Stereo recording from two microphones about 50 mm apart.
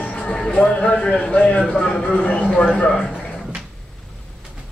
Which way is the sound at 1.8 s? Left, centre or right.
Centre.